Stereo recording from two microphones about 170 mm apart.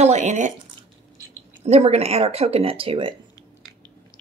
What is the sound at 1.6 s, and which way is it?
Speech, 40° right (ahead or behind).